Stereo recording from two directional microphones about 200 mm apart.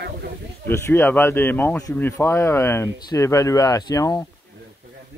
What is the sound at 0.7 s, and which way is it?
Speech, 10° left (ahead or behind).